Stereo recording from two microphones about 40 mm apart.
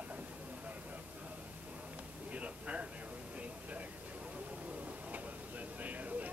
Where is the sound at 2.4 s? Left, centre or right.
Right.